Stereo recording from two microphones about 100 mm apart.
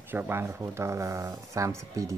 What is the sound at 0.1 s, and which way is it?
Speech, 20° right (ahead or behind).